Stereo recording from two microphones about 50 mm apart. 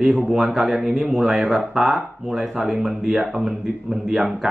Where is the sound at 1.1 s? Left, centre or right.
Centre.